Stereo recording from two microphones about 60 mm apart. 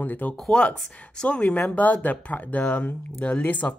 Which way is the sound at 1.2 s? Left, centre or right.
Left.